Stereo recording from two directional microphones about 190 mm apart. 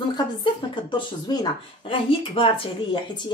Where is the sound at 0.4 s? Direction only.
25° left (ahead or behind).